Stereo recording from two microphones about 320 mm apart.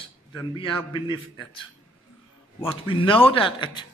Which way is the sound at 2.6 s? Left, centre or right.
Centre.